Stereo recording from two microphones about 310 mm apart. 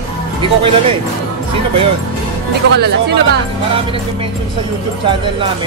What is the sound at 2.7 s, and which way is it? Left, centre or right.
Speech, right.